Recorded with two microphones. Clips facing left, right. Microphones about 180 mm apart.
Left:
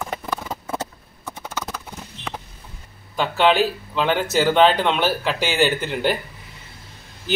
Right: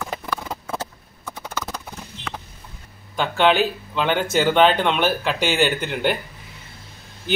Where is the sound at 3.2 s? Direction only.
5° left (ahead or behind).